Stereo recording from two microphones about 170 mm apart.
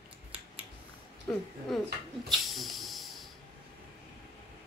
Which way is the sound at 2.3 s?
Centre (ahead or behind).